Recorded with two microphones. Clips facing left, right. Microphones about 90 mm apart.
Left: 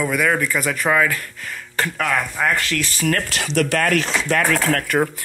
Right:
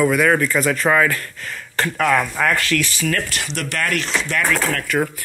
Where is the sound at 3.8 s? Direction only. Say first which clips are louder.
Left 3 dB; 80° left; by 4.8 s 60° left (ahead or behind).